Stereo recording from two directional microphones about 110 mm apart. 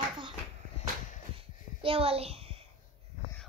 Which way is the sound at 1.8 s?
60° right (ahead or behind).